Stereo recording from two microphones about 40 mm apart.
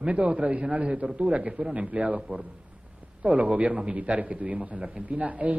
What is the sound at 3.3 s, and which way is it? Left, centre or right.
A man's voice, right.